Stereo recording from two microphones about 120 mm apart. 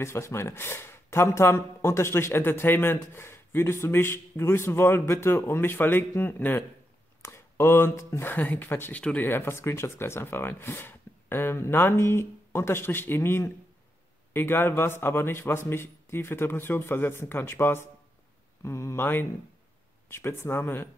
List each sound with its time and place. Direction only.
0.0 s speech: 20° left (ahead or behind)